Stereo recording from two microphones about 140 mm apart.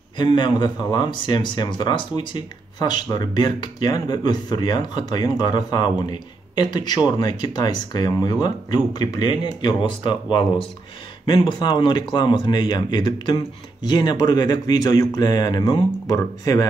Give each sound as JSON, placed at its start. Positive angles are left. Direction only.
{"t": 0.2, "sound": "speech", "side_deg": 35}